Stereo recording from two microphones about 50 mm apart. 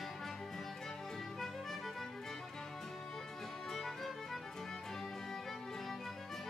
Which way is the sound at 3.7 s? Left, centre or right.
Centre.